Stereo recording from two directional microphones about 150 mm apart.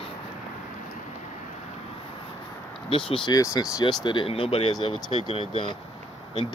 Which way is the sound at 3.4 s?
20° left (ahead or behind).